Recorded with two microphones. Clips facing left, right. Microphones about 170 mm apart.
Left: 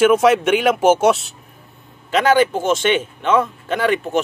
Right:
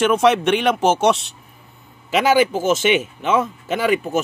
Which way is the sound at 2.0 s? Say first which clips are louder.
Left 1 dB; 10° right (ahead or behind).